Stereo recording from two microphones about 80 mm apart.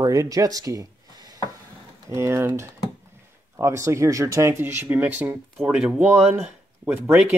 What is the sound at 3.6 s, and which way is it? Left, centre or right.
Speech, right.